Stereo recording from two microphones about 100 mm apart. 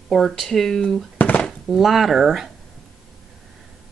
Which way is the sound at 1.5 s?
Centre (ahead or behind).